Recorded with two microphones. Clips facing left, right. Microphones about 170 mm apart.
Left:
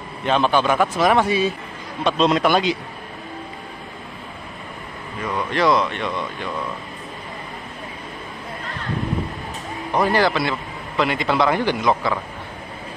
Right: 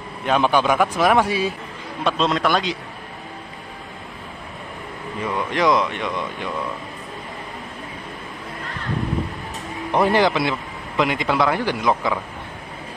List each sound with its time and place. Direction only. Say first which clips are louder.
0.2 s a man's voice: even; 10° right (ahead or behind)
5.2 s speech: even; 10° right (ahead or behind)
10.0 s a man's voice: right 1 dB; 20° right (ahead or behind)